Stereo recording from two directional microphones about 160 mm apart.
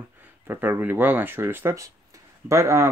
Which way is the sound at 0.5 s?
10° right (ahead or behind).